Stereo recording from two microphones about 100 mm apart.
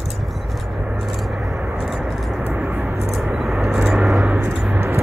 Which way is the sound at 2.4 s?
15° right (ahead or behind).